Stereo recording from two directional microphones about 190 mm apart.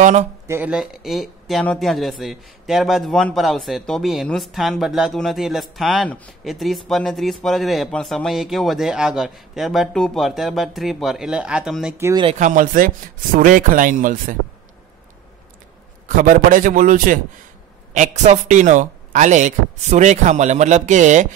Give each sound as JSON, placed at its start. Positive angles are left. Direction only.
{"t": 0.0, "sound": "a man's voice", "side_deg": -35}
{"t": 0.5, "sound": "speech", "side_deg": -10}
{"t": 12.0, "sound": "speech", "side_deg": -15}
{"t": 12.3, "sound": "a man's voice", "side_deg": -40}
{"t": 16.2, "sound": "a man's voice", "side_deg": -45}